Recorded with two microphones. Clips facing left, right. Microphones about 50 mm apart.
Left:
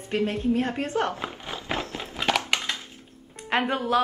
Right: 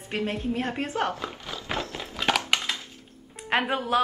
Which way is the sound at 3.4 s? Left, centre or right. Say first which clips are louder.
Even; centre.